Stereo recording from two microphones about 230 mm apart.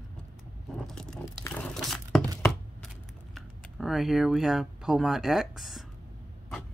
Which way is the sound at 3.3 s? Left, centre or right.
Centre.